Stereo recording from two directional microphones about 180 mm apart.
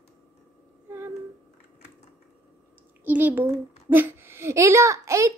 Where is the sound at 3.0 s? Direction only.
10° right (ahead or behind).